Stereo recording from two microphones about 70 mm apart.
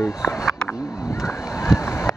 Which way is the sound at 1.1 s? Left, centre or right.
Left.